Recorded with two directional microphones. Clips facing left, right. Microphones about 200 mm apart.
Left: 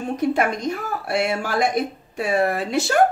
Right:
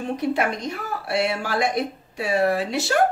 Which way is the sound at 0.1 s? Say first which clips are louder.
Left 3 dB; 45° left (ahead or behind).